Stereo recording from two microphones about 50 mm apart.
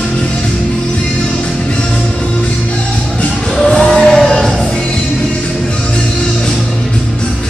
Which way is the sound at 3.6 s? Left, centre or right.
Centre.